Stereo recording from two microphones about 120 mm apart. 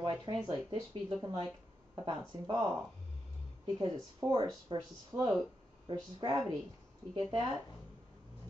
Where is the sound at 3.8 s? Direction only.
35° right (ahead or behind).